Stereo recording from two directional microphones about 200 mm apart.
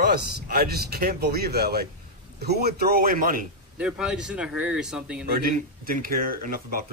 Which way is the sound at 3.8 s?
5° right (ahead or behind).